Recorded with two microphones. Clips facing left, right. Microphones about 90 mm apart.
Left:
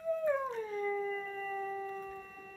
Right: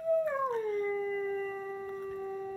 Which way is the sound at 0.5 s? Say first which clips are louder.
Right 5 dB; 40° right (ahead or behind).